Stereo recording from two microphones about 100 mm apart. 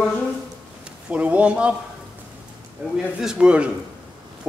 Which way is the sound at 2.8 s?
20° right (ahead or behind).